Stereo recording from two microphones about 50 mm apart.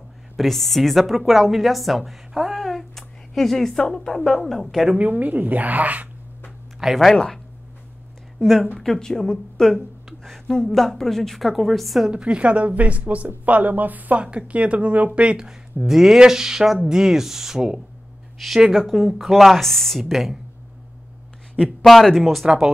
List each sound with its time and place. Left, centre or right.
0.4 s a woman's voice: centre
4.9 s a woman's voice: right
6.8 s speech: centre
7.1 s a woman's voice: centre
8.4 s a woman's voice: centre
9.8 s a sound: centre
10.5 s a woman's voice: centre
12.1 s a woman's voice: right
14.2 s a woman's voice: right
15.4 s speech: centre
18.4 s a woman's voice: centre
21.8 s a woman's voice: centre